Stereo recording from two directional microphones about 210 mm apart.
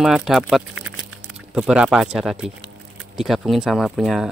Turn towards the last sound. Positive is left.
turn(degrees=0)  # may be behind; listen again after turning